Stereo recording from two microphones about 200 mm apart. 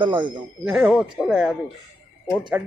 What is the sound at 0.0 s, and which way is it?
Speech, 25° right (ahead or behind).